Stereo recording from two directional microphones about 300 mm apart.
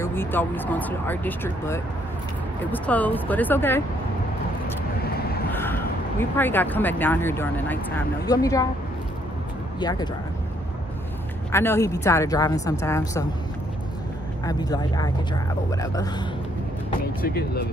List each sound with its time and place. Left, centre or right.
0.0 s speech: centre
5.0 s vehicle: left
5.5 s speech: centre
9.8 s speech: centre
11.5 s speech: centre
14.4 s speech: centre
17.2 s speech: left